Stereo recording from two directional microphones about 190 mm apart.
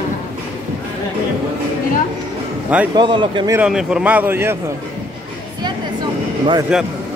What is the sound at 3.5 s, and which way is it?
Speech, 5° right (ahead or behind).